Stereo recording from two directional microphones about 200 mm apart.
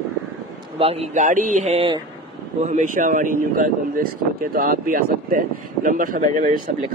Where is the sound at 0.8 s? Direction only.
30° right (ahead or behind).